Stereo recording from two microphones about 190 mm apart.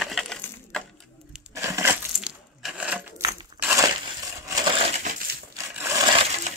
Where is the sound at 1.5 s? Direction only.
15° right (ahead or behind).